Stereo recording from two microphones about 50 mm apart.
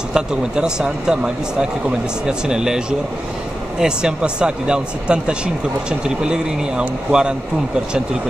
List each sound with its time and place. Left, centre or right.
0.1 s speech: centre
3.8 s speech: centre